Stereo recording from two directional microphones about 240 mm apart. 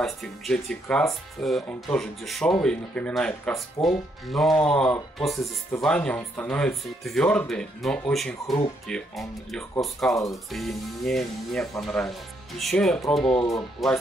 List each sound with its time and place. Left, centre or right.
0.0 s speech: centre
13.4 s speech: centre